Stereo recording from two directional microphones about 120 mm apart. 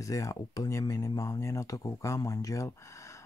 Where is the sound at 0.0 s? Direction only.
25° left (ahead or behind).